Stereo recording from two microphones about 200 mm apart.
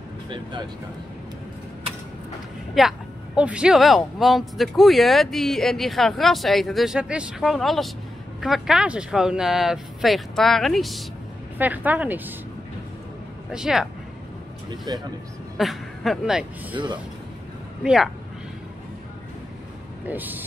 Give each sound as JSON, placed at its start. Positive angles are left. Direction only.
{"t": 0.3, "sound": "speech", "side_deg": -25}
{"t": 2.8, "sound": "speech", "side_deg": 0}
{"t": 13.5, "sound": "speech", "side_deg": -5}
{"t": 14.9, "sound": "speech", "side_deg": -20}
{"t": 15.5, "sound": "a woman's voice", "side_deg": 0}
{"t": 16.7, "sound": "speech", "side_deg": -25}
{"t": 17.8, "sound": "speech", "side_deg": 0}
{"t": 20.1, "sound": "speech", "side_deg": -10}